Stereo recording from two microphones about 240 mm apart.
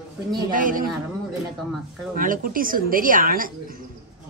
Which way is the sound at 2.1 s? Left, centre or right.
Right.